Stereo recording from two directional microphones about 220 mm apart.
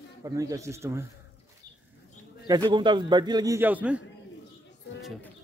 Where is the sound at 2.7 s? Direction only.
20° right (ahead or behind).